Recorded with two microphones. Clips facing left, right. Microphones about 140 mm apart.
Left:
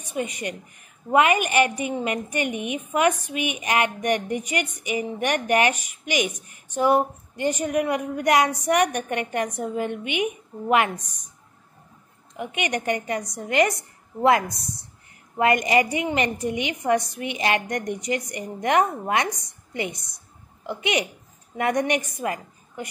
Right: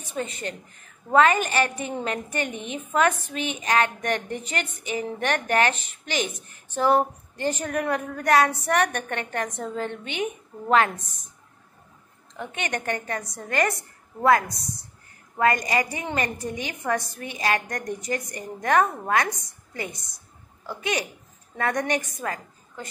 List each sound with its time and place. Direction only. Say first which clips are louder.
0.1 s a woman's voice: left 2 dB; 15° left (ahead or behind)
12.4 s a woman's voice: left 3 dB; 15° left (ahead or behind)